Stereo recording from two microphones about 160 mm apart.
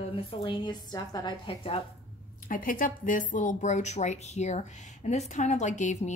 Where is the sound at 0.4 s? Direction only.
25° left (ahead or behind).